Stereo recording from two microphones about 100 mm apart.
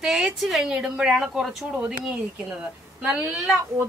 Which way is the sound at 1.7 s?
15° right (ahead or behind).